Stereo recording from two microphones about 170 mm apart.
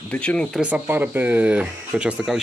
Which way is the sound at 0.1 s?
5° left (ahead or behind).